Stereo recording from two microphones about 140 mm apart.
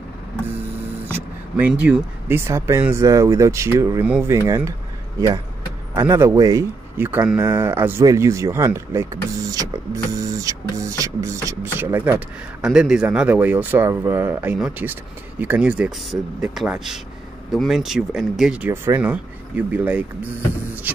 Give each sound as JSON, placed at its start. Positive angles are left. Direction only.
{"t": 1.0, "sound": "a sound", "side_deg": -15}
{"t": 1.8, "sound": "speech", "side_deg": -15}
{"t": 5.9, "sound": "speech", "side_deg": -20}
{"t": 7.1, "sound": "speech", "side_deg": -15}